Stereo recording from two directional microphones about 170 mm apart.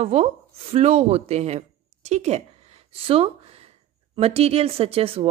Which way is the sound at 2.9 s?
35° right (ahead or behind).